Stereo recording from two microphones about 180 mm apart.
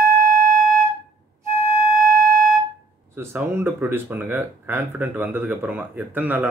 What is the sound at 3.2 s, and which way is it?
Speech, 15° right (ahead or behind).